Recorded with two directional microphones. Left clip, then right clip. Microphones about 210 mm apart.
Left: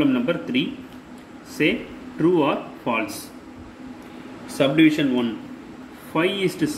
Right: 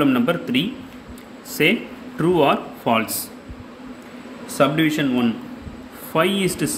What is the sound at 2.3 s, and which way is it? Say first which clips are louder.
Speech: right 3 dB; 40° right (ahead or behind).